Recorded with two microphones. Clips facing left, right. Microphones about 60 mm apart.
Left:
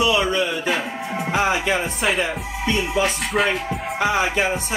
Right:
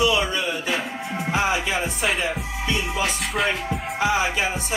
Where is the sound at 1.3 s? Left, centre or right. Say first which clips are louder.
Left 2 dB; left.